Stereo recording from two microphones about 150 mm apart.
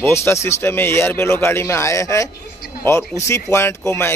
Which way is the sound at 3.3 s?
15° left (ahead or behind).